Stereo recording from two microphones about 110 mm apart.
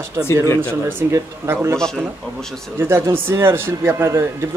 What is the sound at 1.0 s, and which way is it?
Speech, 25° right (ahead or behind).